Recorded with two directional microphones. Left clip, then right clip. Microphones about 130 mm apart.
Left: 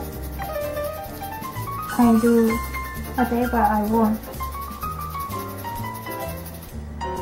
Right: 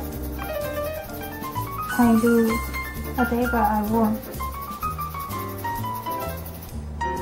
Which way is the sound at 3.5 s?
10° left (ahead or behind).